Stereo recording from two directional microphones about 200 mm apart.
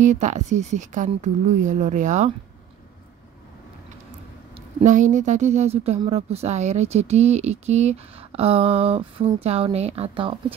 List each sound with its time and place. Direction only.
0.0 s a woman's voice: 35° right (ahead or behind)
4.7 s a woman's voice: 40° right (ahead or behind)